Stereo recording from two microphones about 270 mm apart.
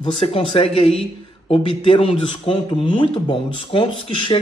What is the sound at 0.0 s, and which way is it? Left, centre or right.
Speech, centre.